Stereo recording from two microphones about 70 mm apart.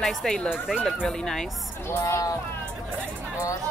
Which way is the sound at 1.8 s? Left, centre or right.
Left.